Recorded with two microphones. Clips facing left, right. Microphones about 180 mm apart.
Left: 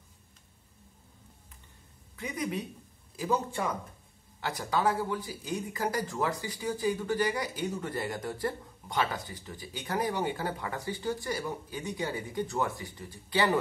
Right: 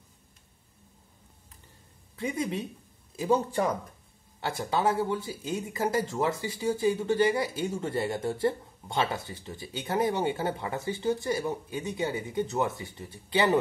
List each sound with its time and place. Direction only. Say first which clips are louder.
2.1 s speech: right 3 dB; 30° right (ahead or behind)